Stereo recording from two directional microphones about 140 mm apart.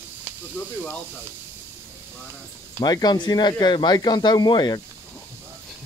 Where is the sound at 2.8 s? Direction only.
30° left (ahead or behind).